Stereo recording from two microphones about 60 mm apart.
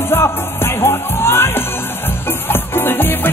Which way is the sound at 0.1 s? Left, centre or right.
Left.